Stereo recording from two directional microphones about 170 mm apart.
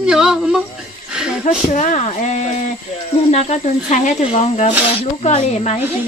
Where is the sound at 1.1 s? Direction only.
5° right (ahead or behind).